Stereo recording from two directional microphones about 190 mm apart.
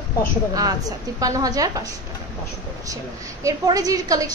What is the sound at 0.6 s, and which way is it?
A woman's voice, 20° right (ahead or behind).